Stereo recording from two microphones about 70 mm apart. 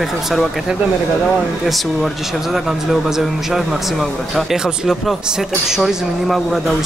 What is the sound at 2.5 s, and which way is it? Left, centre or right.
A man's voice, centre.